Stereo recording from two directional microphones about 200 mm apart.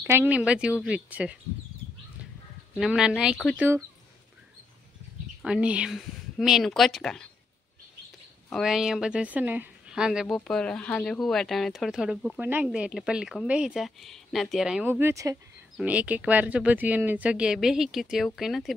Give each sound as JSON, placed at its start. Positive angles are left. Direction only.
{"t": 0.0, "sound": "speech", "side_deg": -10}
{"t": 2.8, "sound": "speech", "side_deg": 0}
{"t": 5.4, "sound": "speech", "side_deg": -5}
{"t": 8.5, "sound": "speech", "side_deg": 0}